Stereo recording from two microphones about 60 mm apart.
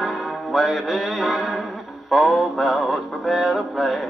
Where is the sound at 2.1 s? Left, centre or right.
Centre.